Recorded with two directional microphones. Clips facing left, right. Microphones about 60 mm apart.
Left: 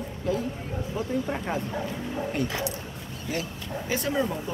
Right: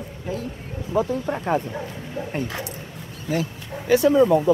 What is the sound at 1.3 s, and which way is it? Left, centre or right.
Speech, right.